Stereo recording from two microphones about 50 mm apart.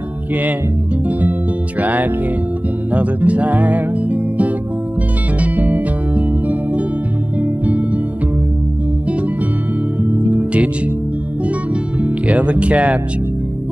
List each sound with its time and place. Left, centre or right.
1.8 s speech: right
2.9 s music: right
10.0 s music: right
12.0 s speech: right